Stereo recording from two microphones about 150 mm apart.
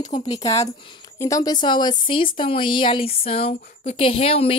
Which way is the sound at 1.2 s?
25° left (ahead or behind).